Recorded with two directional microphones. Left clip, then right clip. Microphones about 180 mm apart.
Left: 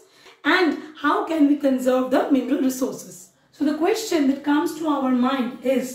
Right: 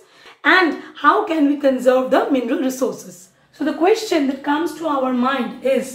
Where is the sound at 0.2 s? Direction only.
Centre (ahead or behind).